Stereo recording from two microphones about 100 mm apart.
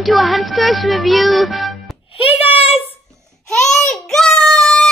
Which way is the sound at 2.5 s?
75° left (ahead or behind).